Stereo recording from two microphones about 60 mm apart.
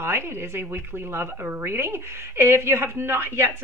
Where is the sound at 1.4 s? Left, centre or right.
Right.